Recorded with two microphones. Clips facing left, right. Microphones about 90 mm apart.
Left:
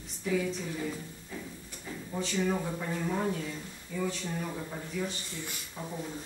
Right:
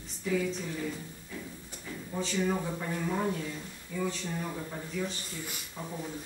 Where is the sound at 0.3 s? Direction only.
Centre (ahead or behind).